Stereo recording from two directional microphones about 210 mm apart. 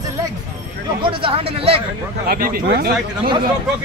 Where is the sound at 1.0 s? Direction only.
25° right (ahead or behind).